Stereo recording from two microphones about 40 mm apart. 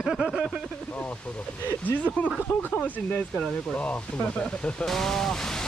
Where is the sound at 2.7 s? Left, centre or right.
Left.